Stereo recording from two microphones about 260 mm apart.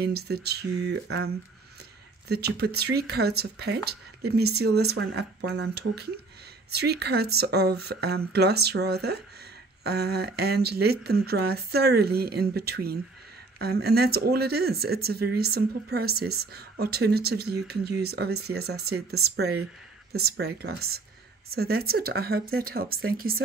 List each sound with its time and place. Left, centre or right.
0.0 s speech: right